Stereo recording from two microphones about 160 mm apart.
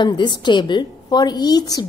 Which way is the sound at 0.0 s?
30° left (ahead or behind).